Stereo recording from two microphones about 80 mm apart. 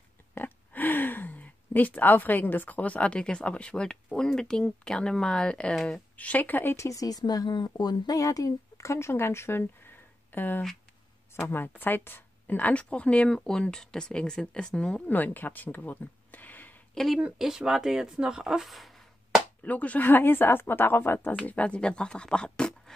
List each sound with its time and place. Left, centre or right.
0.3 s speech: left
6.8 s speech: left
8.2 s speech: left; by 15.0 s centre
15.0 s speech: left
16.9 s speech: centre
17.2 s speech: centre
19.6 s speech: centre
21.4 s speech: centre